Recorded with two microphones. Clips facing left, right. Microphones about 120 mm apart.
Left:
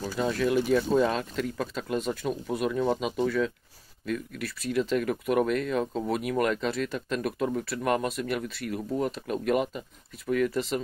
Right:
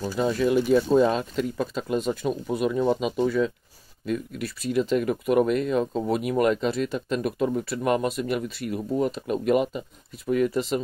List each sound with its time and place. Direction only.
0.0 s speech: 20° right (ahead or behind)